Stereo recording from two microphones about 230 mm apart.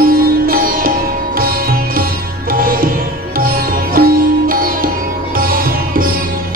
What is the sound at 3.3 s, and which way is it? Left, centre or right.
Music, right.